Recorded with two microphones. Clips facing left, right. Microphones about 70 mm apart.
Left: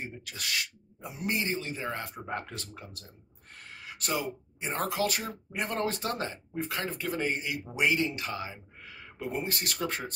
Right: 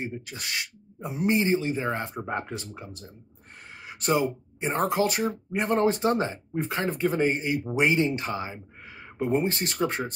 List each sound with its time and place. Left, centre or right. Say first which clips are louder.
0.0 s speech: right 5 dB; right